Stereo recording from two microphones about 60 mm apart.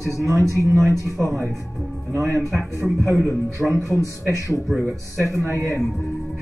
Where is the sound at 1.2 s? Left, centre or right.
Right.